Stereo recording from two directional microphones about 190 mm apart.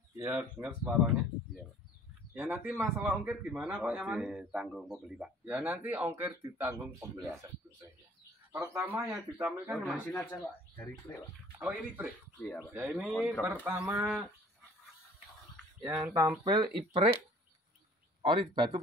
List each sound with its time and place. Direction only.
0.2 s a man's voice: 5° right (ahead or behind)
8.5 s speech: 15° right (ahead or behind)
9.7 s speech: centre (ahead or behind)
11.5 s speech: 10° right (ahead or behind)
12.4 s speech: 10° left (ahead or behind)
12.7 s speech: 5° right (ahead or behind)
15.8 s speech: 10° right (ahead or behind)
16.2 s speech: 20° right (ahead or behind)
18.2 s speech: 25° right (ahead or behind)